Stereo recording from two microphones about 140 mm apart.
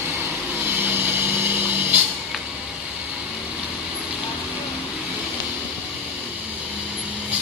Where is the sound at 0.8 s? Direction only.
15° right (ahead or behind).